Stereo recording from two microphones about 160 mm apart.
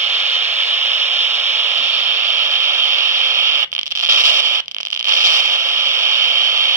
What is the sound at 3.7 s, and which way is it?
Radio, 55° right (ahead or behind).